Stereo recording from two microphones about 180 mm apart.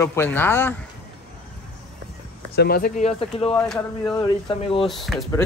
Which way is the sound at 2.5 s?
60° left (ahead or behind).